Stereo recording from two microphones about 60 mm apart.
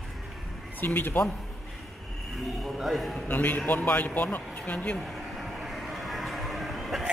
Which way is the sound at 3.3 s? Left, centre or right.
Left.